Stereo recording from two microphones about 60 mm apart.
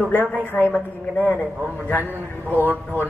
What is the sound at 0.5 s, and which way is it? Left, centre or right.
Speech, left.